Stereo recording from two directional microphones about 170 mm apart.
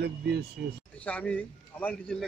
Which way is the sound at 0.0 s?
70° right (ahead or behind).